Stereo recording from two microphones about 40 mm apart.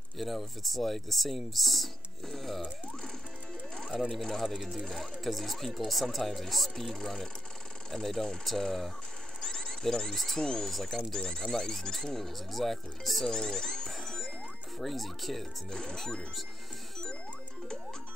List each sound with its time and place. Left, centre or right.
0.2 s speech: centre
4.1 s speech: centre
9.4 s a sound: centre
10.1 s speech: centre
10.4 s speech: centre
10.7 s speech: centre
13.3 s a sound: centre
14.8 s speech: centre
15.7 s speech: centre